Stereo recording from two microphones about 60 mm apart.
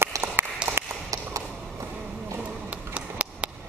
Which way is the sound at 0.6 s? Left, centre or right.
Centre.